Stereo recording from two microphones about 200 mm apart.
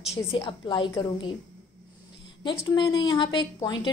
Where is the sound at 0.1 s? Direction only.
25° left (ahead or behind).